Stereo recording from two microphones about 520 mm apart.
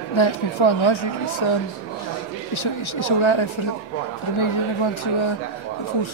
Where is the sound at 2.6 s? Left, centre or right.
Left.